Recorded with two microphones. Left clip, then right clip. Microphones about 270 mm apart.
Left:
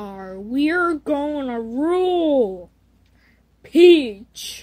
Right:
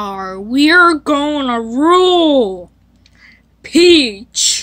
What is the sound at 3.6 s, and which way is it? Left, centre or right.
Speech, centre.